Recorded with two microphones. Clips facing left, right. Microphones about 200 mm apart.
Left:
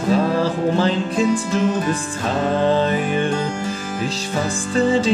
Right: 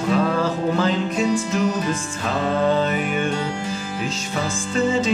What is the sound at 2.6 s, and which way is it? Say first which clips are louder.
Music: left 2 dB; 30° left (ahead or behind).